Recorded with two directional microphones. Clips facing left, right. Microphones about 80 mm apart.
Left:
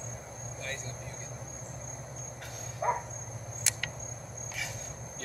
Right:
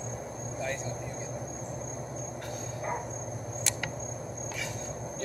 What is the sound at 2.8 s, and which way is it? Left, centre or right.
Cricket, left.